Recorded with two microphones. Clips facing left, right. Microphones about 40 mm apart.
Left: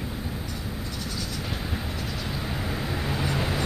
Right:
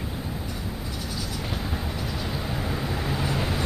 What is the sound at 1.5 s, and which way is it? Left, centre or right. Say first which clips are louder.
Vehicle: right 1 dB; centre.